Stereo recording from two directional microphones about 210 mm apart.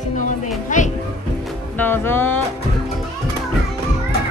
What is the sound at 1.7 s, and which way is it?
Speech, 10° left (ahead or behind).